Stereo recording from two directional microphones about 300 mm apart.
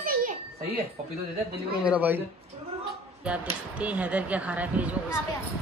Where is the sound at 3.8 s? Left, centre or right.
Centre.